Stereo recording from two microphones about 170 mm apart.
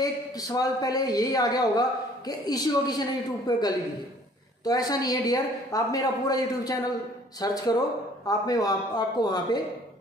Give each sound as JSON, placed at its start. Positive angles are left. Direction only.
{"t": 0.0, "sound": "a man's voice", "side_deg": 20}